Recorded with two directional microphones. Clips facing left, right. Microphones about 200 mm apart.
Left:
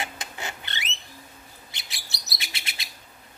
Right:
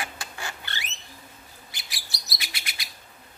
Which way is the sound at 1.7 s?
25° left (ahead or behind).